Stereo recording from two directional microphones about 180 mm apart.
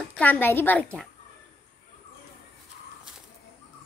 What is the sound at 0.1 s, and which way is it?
Speech, 10° left (ahead or behind).